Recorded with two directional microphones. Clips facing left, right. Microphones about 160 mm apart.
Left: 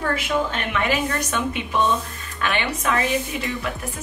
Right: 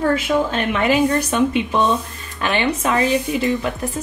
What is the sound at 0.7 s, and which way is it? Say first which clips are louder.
Speech: right 6 dB; 30° right (ahead or behind).